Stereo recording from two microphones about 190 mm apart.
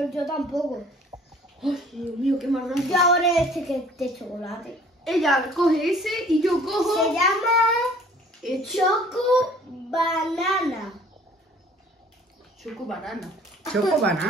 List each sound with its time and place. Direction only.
0.0 s speech: centre (ahead or behind)
1.1 s a sound: 20° right (ahead or behind)
1.6 s speech: centre (ahead or behind)
12.6 s speech: centre (ahead or behind)